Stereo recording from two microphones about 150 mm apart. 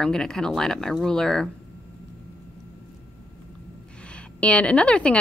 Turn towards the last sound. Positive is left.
turn(degrees=5)  # may be behind; listen again after turning